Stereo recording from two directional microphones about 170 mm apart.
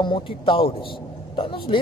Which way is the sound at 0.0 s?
30° left (ahead or behind).